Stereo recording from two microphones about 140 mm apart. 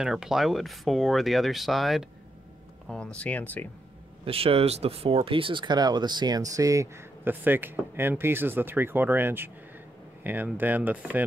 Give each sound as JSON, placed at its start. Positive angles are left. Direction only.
{"t": 0.0, "sound": "speech", "side_deg": -5}
{"t": 4.2, "sound": "speech", "side_deg": -45}